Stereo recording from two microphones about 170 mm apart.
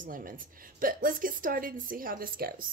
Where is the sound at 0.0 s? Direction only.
55° right (ahead or behind).